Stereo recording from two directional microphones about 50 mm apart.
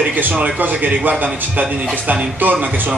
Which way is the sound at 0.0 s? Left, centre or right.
Right.